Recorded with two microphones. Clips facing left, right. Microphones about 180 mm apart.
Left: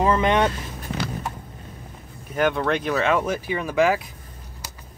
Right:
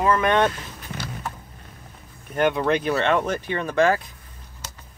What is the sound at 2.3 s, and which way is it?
Speech, centre (ahead or behind).